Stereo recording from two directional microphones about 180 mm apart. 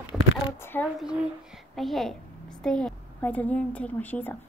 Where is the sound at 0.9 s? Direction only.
5° right (ahead or behind).